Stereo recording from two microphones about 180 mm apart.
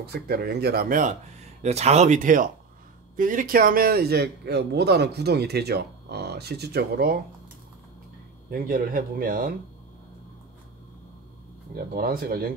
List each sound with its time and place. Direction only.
0.0 s a man's voice: 60° right (ahead or behind)
1.6 s a man's voice: 35° right (ahead or behind); by 7.2 s 60° right (ahead or behind)
8.5 s speech: 50° right (ahead or behind)
11.7 s speech: 55° right (ahead or behind)